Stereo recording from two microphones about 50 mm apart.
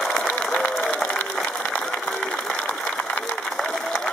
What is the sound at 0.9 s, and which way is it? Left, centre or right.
Applause, left.